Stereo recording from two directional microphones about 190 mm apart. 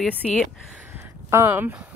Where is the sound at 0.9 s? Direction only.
10° right (ahead or behind).